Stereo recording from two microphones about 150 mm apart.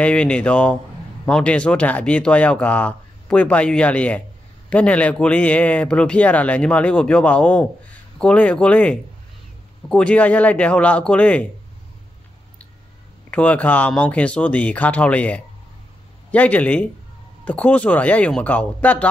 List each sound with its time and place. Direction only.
0.0 s speech: 5° left (ahead or behind)
13.3 s speech: 10° left (ahead or behind)